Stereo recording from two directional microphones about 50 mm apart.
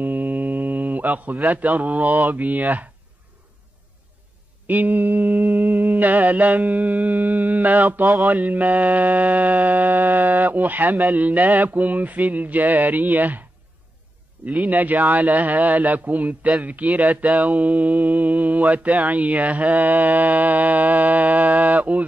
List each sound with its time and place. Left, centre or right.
0.0 s speech: right
4.6 s mantra: right
8.3 s speech: right
14.5 s speech: right